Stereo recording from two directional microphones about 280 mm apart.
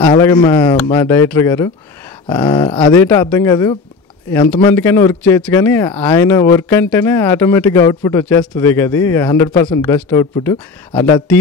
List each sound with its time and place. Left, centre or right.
0.1 s speech: centre
10.9 s speech: centre